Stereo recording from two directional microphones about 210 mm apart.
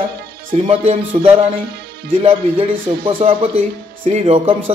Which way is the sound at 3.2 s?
30° right (ahead or behind).